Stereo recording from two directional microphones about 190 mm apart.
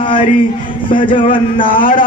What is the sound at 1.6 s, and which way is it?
Speech, 50° left (ahead or behind).